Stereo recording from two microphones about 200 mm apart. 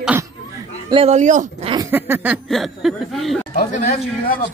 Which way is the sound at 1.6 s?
20° right (ahead or behind).